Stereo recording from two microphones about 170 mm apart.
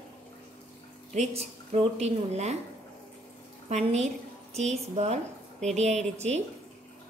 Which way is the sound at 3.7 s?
40° right (ahead or behind).